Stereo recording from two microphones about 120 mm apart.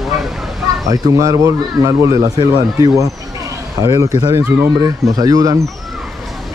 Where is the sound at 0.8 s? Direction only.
30° right (ahead or behind).